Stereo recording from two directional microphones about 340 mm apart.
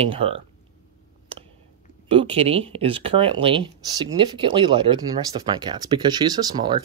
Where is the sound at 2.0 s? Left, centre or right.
Centre.